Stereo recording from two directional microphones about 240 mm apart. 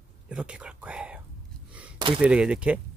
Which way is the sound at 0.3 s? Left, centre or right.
Centre.